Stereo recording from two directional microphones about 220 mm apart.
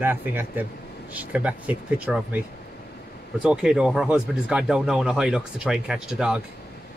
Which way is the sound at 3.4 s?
5° right (ahead or behind).